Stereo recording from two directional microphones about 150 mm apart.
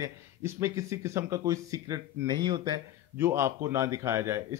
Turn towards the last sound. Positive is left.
turn(degrees=-20)  # may be behind; listen again after turning